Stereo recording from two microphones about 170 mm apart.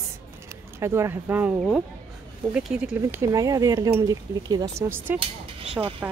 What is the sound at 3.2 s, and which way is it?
A woman's voice, 20° right (ahead or behind).